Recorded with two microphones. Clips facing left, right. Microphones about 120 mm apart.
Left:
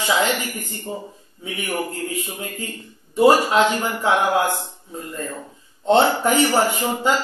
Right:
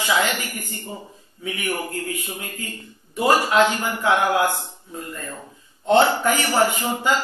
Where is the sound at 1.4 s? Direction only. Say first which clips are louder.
Left 1 dB; 25° left (ahead or behind).